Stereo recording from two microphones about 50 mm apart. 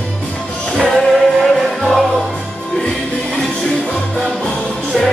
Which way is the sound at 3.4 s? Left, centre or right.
Centre.